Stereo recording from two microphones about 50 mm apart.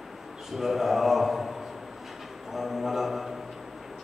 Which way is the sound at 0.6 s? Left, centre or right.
Centre.